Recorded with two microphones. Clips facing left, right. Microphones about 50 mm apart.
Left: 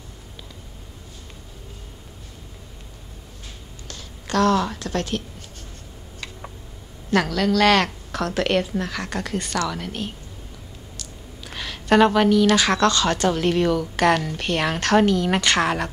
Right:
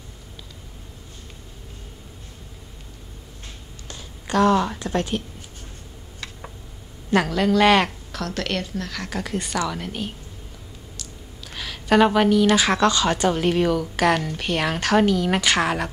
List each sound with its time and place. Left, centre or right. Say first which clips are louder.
3.8 s speech: even; centre
7.1 s speech: right 1 dB; centre
8.1 s a woman's voice: left 5 dB; centre